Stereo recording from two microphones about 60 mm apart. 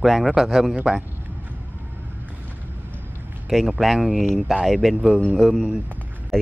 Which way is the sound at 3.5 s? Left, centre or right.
Centre.